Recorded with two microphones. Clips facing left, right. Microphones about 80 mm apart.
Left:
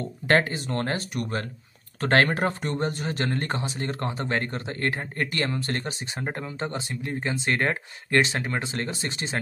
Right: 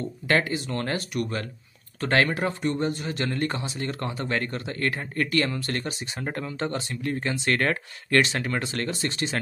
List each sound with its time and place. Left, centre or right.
0.3 s speech: left